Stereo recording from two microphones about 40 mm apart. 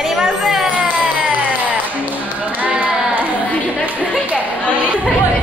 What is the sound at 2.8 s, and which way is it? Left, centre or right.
Child singing, right.